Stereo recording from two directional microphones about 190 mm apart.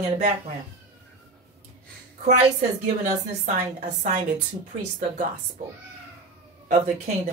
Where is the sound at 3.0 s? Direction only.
35° right (ahead or behind).